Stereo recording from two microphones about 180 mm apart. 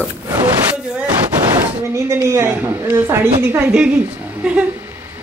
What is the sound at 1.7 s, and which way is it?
Speech, 15° right (ahead or behind).